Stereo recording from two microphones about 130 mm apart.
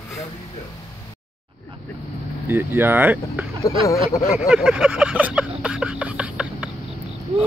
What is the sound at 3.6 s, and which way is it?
Speech, 25° left (ahead or behind).